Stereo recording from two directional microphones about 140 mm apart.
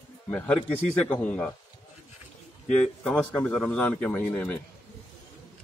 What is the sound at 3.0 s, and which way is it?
A man's voice, 10° left (ahead or behind).